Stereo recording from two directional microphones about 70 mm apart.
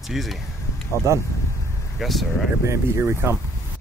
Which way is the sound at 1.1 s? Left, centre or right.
Right.